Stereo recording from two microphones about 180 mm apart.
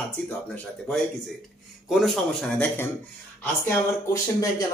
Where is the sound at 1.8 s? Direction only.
Centre (ahead or behind).